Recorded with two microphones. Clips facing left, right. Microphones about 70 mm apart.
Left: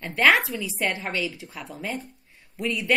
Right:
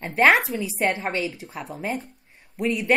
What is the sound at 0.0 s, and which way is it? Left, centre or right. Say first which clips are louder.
A woman's voice: right 2 dB; right.